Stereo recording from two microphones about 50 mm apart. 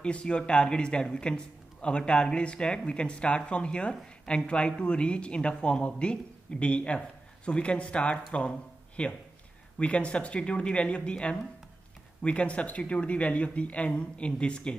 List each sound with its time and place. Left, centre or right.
0.0 s a man's voice: left